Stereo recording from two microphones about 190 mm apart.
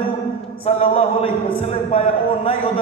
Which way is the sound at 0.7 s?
30° left (ahead or behind).